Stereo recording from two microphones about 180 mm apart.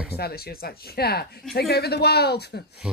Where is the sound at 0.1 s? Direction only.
60° left (ahead or behind).